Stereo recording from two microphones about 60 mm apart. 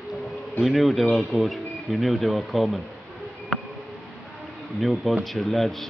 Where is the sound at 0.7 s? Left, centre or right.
Centre.